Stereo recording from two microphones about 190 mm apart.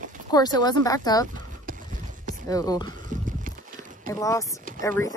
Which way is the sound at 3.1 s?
40° right (ahead or behind).